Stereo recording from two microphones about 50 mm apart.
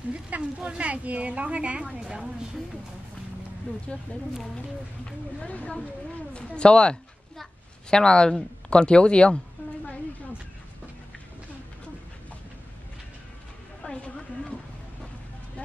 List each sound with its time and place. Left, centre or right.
0.1 s speech: right
1.8 s a woman's voice: centre
3.9 s speech: centre
5.4 s speech: left
13.8 s a sound: left